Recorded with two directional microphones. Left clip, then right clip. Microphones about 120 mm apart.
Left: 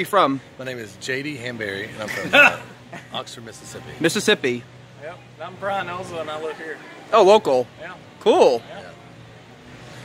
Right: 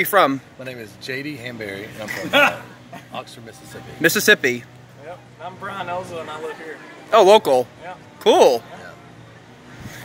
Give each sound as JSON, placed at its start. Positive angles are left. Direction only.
{"t": 0.0, "sound": "a man's voice", "side_deg": 0}
{"t": 0.6, "sound": "speech", "side_deg": 40}
{"t": 2.0, "sound": "a man's voice", "side_deg": 15}
{"t": 4.0, "sound": "speech", "side_deg": 5}
{"t": 5.4, "sound": "speech", "side_deg": 25}
{"t": 7.1, "sound": "a man's voice", "side_deg": 0}